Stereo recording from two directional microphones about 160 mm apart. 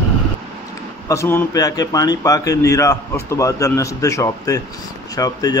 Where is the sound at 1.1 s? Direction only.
15° left (ahead or behind).